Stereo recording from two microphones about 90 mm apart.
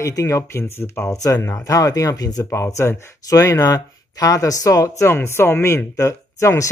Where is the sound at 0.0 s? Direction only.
35° left (ahead or behind).